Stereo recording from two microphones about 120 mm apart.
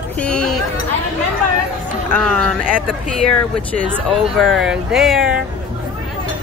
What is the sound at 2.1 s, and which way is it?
Speech, 10° left (ahead or behind).